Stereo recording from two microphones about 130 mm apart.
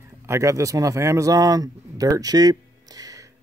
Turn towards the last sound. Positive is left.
turn(degrees=-30)  # may be behind; listen again after turning